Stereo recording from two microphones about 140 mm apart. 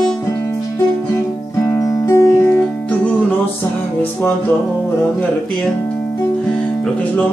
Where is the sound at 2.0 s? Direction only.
20° left (ahead or behind).